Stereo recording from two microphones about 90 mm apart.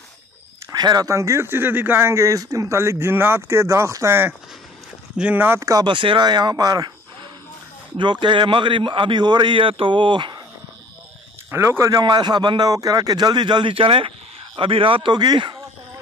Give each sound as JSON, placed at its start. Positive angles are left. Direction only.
{"t": 0.7, "sound": "speech", "side_deg": -50}
{"t": 5.1, "sound": "speech", "side_deg": -10}
{"t": 5.4, "sound": "speech", "side_deg": -25}
{"t": 5.9, "sound": "speech", "side_deg": -65}
{"t": 8.0, "sound": "speech", "side_deg": -60}
{"t": 11.5, "sound": "speech", "side_deg": -30}
{"t": 12.0, "sound": "speech", "side_deg": -55}